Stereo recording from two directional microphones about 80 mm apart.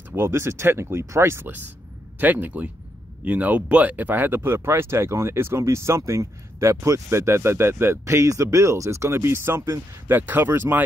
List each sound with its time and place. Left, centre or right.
0.1 s speech: right